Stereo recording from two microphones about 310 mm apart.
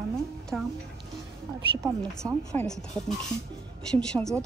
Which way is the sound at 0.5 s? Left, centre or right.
Centre.